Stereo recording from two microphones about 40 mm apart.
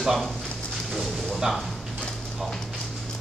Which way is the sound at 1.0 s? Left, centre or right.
Centre.